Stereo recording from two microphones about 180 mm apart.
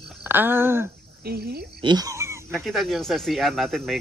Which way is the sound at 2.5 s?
Centre (ahead or behind).